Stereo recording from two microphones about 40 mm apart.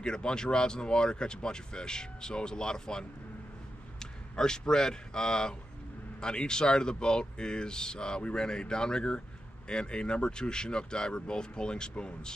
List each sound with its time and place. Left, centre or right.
0.0 s speech: left